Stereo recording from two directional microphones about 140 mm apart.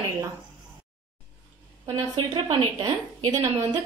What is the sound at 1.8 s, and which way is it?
A woman's voice, 30° right (ahead or behind).